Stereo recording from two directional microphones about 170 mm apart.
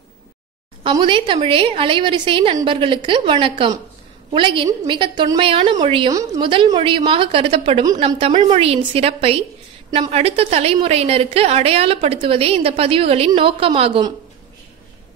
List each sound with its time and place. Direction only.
0.8 s a woman's voice: 30° right (ahead or behind)